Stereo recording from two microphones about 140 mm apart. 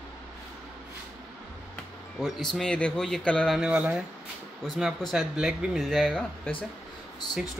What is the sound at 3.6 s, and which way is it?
Speech, 10° right (ahead or behind).